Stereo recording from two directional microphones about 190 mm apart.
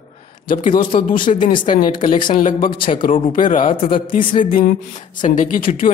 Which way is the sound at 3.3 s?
45° left (ahead or behind).